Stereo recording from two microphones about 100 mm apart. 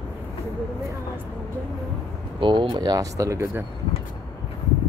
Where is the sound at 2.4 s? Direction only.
55° right (ahead or behind); by 3.6 s 30° right (ahead or behind).